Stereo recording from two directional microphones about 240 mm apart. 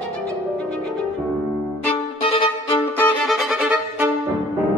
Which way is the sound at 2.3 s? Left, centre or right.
Left.